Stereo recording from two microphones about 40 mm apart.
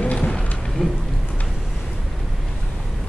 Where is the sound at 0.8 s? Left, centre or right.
Centre.